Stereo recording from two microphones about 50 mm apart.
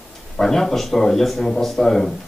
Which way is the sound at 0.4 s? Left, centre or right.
Centre.